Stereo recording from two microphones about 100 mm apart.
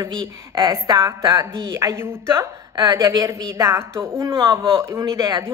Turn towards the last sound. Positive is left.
turn(degrees=-35)  # may be behind; listen again after turning